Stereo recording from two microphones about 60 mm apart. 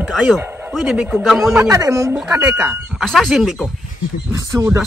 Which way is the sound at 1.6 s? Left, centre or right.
Right.